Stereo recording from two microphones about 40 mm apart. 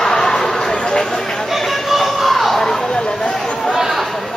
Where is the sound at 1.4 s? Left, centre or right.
Centre.